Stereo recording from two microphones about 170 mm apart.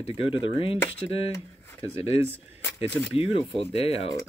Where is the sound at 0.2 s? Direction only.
35° left (ahead or behind).